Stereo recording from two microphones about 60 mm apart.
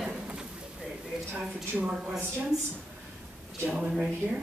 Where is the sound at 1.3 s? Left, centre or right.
Right.